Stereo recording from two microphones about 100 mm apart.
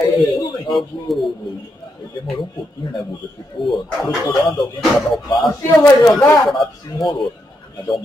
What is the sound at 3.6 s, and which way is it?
Speech, 55° left (ahead or behind).